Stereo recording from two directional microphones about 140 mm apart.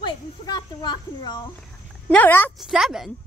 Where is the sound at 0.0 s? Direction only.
30° left (ahead or behind).